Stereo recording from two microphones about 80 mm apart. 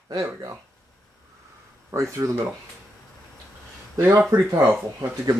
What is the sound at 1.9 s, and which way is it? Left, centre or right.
Speech, right.